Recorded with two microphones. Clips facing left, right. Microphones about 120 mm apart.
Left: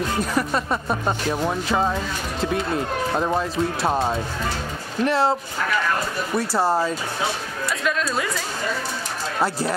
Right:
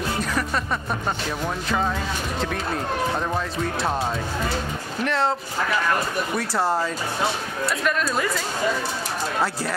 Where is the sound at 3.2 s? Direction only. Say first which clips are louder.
Left 4 dB; 15° left (ahead or behind).